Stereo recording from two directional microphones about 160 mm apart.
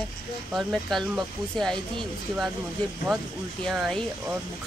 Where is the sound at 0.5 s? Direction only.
Centre (ahead or behind).